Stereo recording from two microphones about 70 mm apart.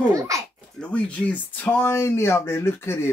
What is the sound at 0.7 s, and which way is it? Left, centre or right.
Speech, centre.